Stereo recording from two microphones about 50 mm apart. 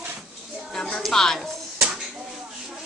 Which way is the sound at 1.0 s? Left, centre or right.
Centre.